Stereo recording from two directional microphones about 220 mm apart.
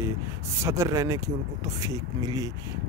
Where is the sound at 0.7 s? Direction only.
15° right (ahead or behind).